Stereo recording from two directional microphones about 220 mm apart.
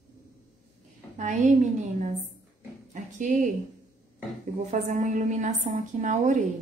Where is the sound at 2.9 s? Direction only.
35° right (ahead or behind).